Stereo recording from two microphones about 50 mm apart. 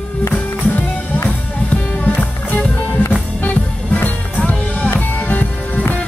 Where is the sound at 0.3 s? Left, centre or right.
Left.